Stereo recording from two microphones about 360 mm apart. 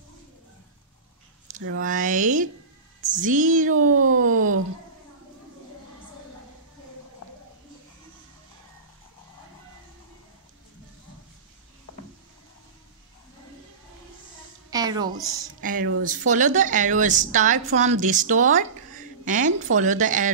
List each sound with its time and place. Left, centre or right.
1.8 s a woman's voice: right
3.7 s speech: right
14.7 s a woman's voice: centre
15.6 s a woman's voice: right